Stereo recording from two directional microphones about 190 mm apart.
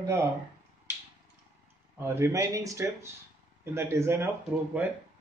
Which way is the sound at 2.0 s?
15° right (ahead or behind).